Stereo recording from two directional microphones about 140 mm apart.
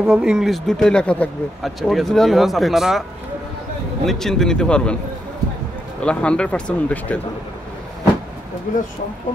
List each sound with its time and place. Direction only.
0.0 s speech: 5° right (ahead or behind)
4.0 s speech: 5° left (ahead or behind)
5.9 s speech: 10° left (ahead or behind)